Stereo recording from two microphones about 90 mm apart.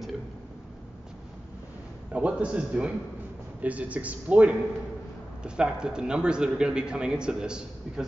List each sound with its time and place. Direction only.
2.1 s a man's voice: 15° right (ahead or behind)